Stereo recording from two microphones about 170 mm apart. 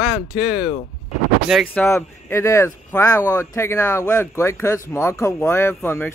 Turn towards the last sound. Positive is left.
turn(degrees=10)  # may be behind; listen again after turning